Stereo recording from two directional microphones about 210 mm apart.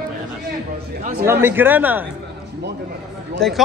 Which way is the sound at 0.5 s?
40° right (ahead or behind).